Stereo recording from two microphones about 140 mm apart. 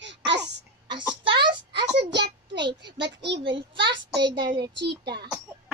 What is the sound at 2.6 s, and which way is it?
A child's voice, 35° right (ahead or behind).